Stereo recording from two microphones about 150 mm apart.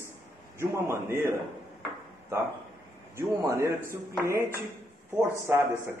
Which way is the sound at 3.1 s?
20° right (ahead or behind).